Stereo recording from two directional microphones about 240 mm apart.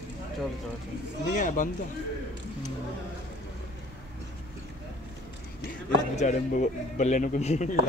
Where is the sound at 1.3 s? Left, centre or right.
Left.